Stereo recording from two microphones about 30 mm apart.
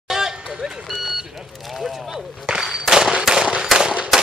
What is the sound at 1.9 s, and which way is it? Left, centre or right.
Speech, centre.